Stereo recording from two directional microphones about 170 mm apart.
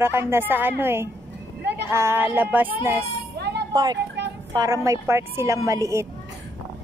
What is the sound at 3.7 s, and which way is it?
Speech, 25° right (ahead or behind).